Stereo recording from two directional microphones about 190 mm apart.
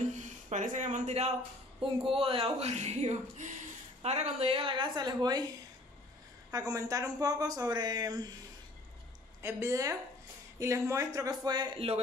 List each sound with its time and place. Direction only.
0.0 s speech: 40° right (ahead or behind); by 5.4 s 20° right (ahead or behind)
6.5 s speech: 20° right (ahead or behind)
9.4 s a woman's voice: 15° right (ahead or behind)